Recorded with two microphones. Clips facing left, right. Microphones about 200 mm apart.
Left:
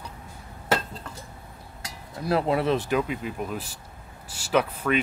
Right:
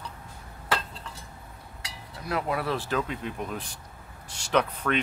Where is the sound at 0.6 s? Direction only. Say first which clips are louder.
Left 4 dB; 45° left (ahead or behind).